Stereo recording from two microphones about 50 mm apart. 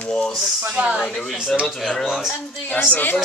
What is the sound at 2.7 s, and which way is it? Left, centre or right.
Speech, left.